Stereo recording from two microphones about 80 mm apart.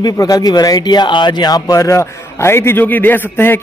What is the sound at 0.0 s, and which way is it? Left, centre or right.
Speech, left.